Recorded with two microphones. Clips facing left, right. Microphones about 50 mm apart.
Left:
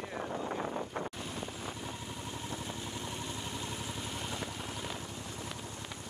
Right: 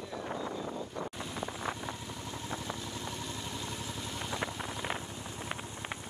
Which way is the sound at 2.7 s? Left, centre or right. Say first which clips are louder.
Even; left.